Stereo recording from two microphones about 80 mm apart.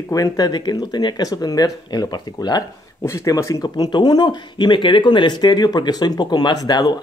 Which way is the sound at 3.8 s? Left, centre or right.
Left.